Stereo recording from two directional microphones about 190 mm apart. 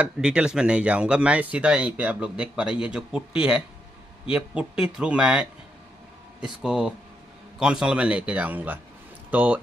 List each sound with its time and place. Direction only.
0.0 s speech: 5° right (ahead or behind)